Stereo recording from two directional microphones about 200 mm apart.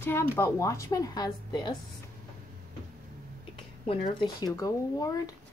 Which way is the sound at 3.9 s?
20° left (ahead or behind).